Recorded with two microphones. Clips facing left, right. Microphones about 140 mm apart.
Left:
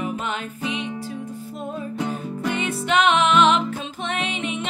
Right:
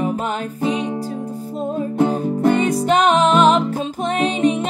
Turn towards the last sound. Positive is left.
turn(degrees=-40)  # may be behind; listen again after turning